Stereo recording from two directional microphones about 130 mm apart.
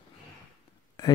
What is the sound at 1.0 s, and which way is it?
Speech, 30° left (ahead or behind).